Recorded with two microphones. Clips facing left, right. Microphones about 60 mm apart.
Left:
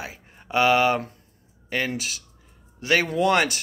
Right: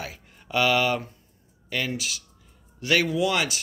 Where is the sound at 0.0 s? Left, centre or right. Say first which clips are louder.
Even; left.